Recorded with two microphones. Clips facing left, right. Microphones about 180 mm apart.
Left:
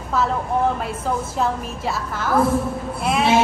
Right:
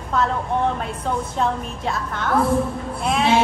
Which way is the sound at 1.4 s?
5° left (ahead or behind).